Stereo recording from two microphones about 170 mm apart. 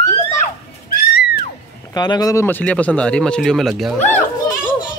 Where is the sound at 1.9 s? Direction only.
25° left (ahead or behind).